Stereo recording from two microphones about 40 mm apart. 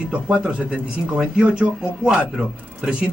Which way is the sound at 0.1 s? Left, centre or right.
Right.